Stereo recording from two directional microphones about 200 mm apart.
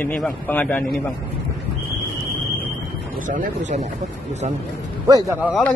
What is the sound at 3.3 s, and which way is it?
Speech, 40° right (ahead or behind).